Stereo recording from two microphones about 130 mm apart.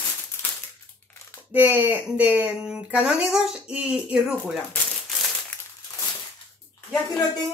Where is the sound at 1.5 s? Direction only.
15° right (ahead or behind).